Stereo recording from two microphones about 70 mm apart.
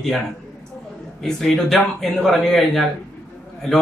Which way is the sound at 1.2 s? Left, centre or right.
Centre.